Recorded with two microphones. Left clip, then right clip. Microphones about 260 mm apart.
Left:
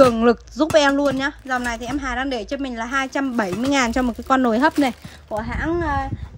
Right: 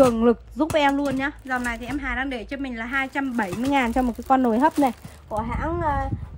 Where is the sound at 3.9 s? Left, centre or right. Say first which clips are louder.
Left 1 dB; right.